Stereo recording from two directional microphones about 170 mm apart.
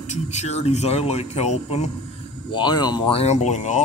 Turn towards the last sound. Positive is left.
turn(degrees=45)  # may be behind; listen again after turning